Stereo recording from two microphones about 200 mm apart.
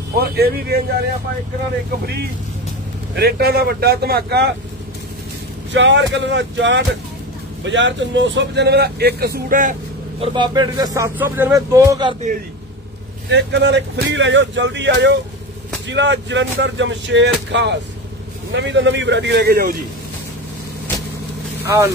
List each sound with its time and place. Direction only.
0.1 s speech: 50° right (ahead or behind)
3.2 s speech: 50° right (ahead or behind)
5.7 s speech: 65° right (ahead or behind); by 9.8 s 40° right (ahead or behind)
10.2 s speech: 25° right (ahead or behind)
13.3 s speech: 60° right (ahead or behind)